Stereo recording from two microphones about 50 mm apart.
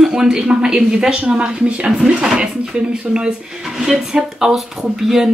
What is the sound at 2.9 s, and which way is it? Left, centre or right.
Speech, centre.